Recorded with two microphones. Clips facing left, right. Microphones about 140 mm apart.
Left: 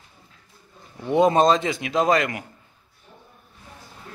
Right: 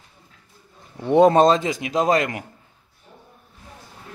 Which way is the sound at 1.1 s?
35° right (ahead or behind).